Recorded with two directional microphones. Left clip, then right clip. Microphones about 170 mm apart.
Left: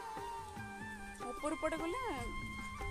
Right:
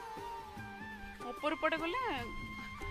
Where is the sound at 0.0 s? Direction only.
Centre (ahead or behind).